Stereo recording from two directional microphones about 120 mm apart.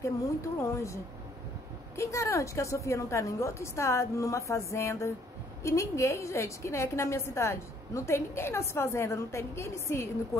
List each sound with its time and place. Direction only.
0.6 s a woman's voice: 25° left (ahead or behind)
2.0 s a woman's voice: 25° left (ahead or behind)